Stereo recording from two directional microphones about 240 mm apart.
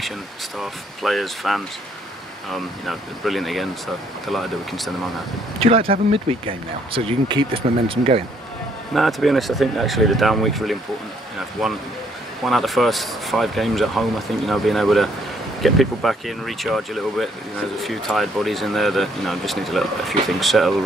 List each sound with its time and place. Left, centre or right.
0.6 s speech: centre
5.9 s speech: right
8.9 s speech: centre